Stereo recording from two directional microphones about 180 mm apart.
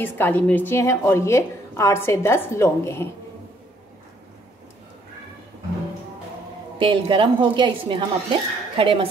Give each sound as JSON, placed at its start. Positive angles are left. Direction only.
{"t": 0.0, "sound": "a woman's voice", "side_deg": 10}
{"t": 6.8, "sound": "speech", "side_deg": -30}